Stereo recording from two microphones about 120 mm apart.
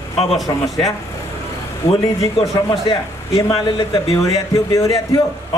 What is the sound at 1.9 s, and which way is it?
A man's voice, 50° left (ahead or behind).